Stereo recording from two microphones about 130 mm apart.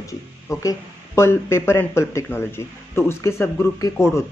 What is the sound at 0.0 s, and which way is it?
Speech, 25° left (ahead or behind).